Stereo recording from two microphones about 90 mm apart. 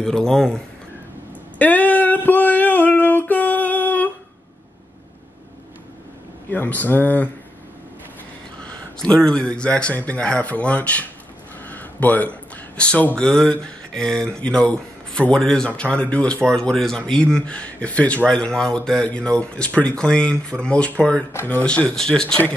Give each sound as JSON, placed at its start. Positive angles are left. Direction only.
{"t": 0.0, "sound": "speech", "side_deg": 5}
{"t": 1.6, "sound": "a sound", "side_deg": 15}
{"t": 6.5, "sound": "speech", "side_deg": 20}
{"t": 8.5, "sound": "speech", "side_deg": 10}
{"t": 11.6, "sound": "a sound", "side_deg": 20}
{"t": 13.5, "sound": "speech", "side_deg": 10}
{"t": 21.3, "sound": "speech", "side_deg": 25}
{"t": 21.6, "sound": "speech", "side_deg": 10}